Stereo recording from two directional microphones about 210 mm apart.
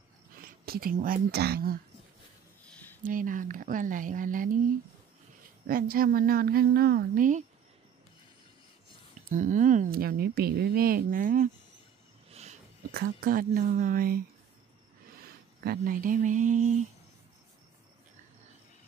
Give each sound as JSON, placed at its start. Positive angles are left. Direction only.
{"t": 0.3, "sound": "speech", "side_deg": -45}
{"t": 3.0, "sound": "speech", "side_deg": -40}
{"t": 9.3, "sound": "speech", "side_deg": -35}
{"t": 12.3, "sound": "a sound", "side_deg": -30}
{"t": 12.9, "sound": "speech", "side_deg": -45}